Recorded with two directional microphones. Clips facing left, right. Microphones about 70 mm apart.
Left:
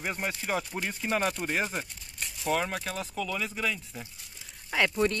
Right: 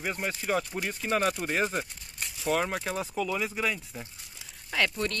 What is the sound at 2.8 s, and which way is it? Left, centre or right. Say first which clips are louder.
Speech: right 3 dB; centre.